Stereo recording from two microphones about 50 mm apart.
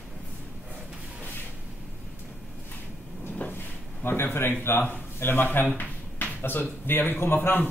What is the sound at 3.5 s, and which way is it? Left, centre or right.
Drawer open or close, left.